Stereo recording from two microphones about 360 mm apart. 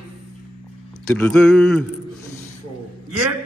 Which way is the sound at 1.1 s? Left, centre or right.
Centre.